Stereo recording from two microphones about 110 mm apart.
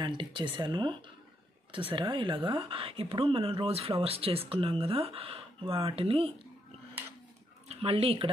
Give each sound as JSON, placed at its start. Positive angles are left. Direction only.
{"t": 0.0, "sound": "speech", "side_deg": -45}
{"t": 7.6, "sound": "speech", "side_deg": -65}